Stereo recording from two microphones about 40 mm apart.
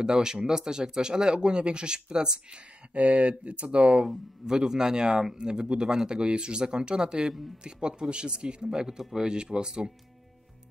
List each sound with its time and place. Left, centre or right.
0.0 s speech: centre
2.9 s speech: right
3.8 s speech: centre